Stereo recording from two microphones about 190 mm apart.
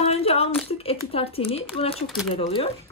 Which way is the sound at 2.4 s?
30° left (ahead or behind).